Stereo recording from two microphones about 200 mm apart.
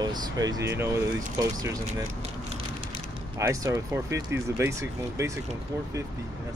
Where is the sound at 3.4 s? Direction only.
15° right (ahead or behind).